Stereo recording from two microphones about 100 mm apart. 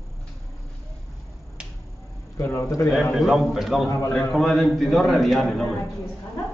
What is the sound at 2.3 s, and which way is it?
Speech, 25° left (ahead or behind).